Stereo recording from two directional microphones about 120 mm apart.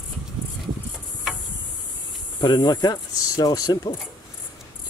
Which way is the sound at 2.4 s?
35° left (ahead or behind).